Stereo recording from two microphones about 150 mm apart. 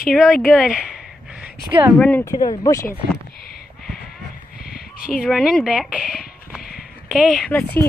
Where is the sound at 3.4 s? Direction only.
90° left.